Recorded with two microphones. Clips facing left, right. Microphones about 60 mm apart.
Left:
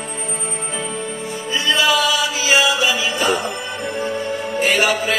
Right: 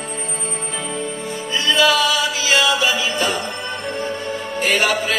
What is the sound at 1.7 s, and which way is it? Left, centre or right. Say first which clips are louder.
Music: right 1 dB; centre.